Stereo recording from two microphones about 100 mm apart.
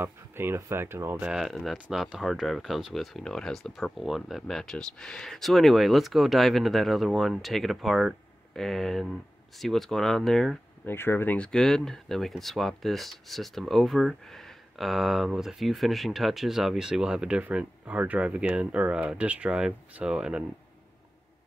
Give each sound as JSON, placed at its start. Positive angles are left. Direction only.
{"t": 0.0, "sound": "speech", "side_deg": -25}
{"t": 1.2, "sound": "speech", "side_deg": -5}
{"t": 10.9, "sound": "speech", "side_deg": 25}
{"t": 11.3, "sound": "speech", "side_deg": 10}